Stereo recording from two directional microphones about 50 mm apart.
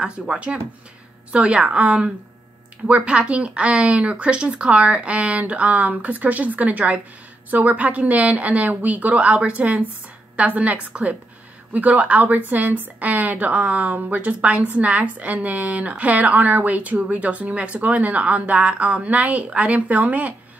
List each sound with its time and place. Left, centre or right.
0.0 s a woman's voice: centre